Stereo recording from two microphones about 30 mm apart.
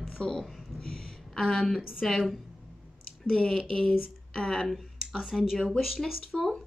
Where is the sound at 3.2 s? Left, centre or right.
Left.